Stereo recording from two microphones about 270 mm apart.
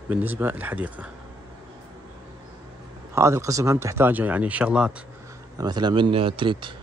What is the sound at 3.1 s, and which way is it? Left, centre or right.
Speech, centre.